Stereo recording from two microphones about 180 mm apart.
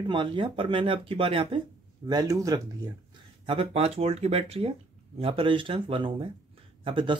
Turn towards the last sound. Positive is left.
turn(degrees=-25)  # may be behind; listen again after turning